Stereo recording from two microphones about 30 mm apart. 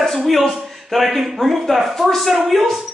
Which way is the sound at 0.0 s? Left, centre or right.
Centre.